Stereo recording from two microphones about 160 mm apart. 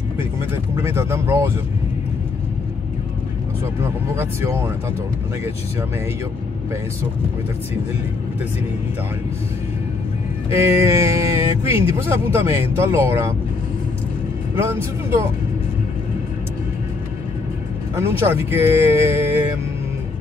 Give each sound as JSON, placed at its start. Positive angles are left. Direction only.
{"t": 0.7, "sound": "speech", "side_deg": -15}
{"t": 3.8, "sound": "speech", "side_deg": -15}
{"t": 10.5, "sound": "speech", "side_deg": -15}
{"t": 14.5, "sound": "speech", "side_deg": -15}
{"t": 17.9, "sound": "speech", "side_deg": -15}